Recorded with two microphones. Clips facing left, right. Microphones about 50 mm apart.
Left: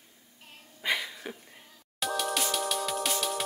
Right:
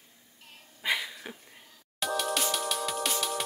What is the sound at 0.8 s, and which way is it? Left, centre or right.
Dog, centre.